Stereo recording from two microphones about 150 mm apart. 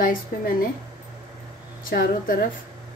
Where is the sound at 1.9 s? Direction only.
75° left (ahead or behind).